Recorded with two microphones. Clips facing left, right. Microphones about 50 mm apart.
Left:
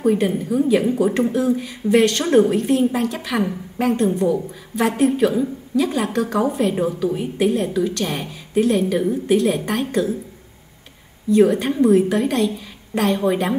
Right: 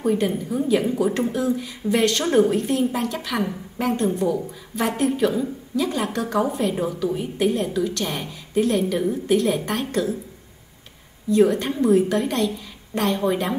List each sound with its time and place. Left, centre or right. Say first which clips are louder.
0.0 s a woman's voice: left 3 dB; centre
6.8 s a woman's voice: left 3 dB; centre
11.2 s a woman's voice: left 3 dB; centre